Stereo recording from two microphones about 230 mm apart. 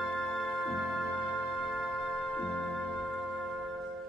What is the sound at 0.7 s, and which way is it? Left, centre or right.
Music, centre.